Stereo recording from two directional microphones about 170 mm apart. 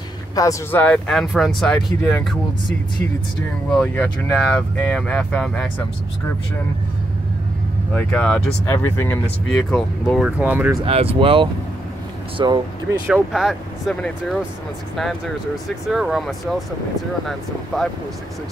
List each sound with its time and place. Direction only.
0.4 s speech: 15° left (ahead or behind)
3.7 s speech: 10° left (ahead or behind)
7.9 s speech: 10° left (ahead or behind)
10.2 s speech: 10° right (ahead or behind)
10.8 s speech: 35° right (ahead or behind)
13.0 s speech: centre (ahead or behind)
15.9 s speech: 5° right (ahead or behind)